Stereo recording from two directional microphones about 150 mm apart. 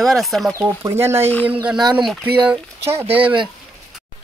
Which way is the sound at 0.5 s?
20° right (ahead or behind).